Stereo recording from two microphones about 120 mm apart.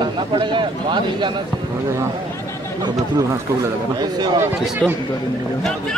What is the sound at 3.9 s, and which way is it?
Speech, 35° right (ahead or behind).